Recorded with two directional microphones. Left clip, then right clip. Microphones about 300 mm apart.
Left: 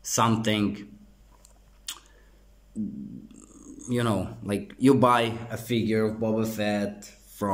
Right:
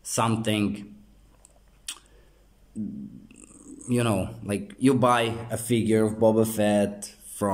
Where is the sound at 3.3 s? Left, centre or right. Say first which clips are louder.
Left 1 dB; centre.